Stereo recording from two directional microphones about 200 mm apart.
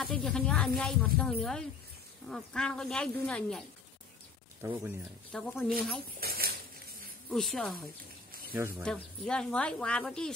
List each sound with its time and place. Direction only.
0.0 s speech: 5° left (ahead or behind)
4.6 s speech: 10° right (ahead or behind)
5.3 s speech: 5° left (ahead or behind)
6.1 s a sound: 50° right (ahead or behind)
7.2 s speech: 5° left (ahead or behind)
8.8 s speech: 5° left (ahead or behind)